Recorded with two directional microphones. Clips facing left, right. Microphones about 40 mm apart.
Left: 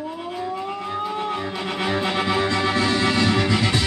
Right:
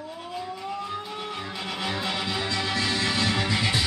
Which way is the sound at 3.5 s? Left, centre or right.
Centre.